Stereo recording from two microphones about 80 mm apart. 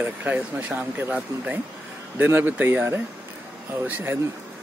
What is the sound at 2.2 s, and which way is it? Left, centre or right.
Speech, right.